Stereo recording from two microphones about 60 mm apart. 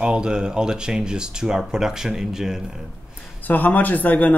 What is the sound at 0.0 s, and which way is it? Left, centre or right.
Speech, centre.